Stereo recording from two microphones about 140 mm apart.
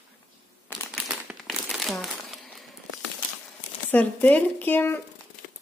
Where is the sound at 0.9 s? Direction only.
Centre (ahead or behind).